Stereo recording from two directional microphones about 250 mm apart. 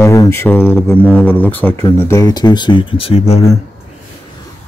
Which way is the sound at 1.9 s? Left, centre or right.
Centre.